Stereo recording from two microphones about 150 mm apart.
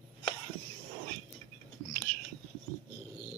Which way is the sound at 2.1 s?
80° left.